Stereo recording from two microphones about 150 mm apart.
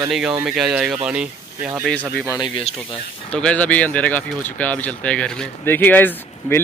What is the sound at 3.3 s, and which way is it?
Speech, 10° left (ahead or behind).